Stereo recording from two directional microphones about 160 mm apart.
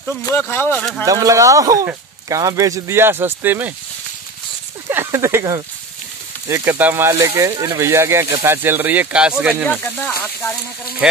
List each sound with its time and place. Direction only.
0.2 s speech: 15° left (ahead or behind)
1.0 s speech: 20° right (ahead or behind)
4.8 s speech: 15° right (ahead or behind)
9.7 s speech: 10° left (ahead or behind)